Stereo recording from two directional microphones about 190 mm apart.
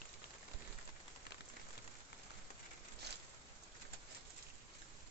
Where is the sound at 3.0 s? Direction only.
60° right (ahead or behind).